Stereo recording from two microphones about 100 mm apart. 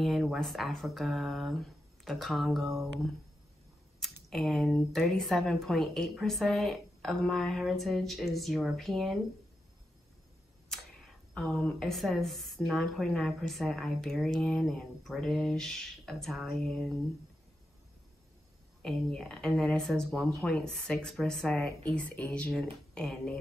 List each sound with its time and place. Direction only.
0.0 s speech: centre (ahead or behind)
4.0 s speech: centre (ahead or behind)
10.7 s speech: 5° left (ahead or behind)
18.8 s speech: 10° left (ahead or behind)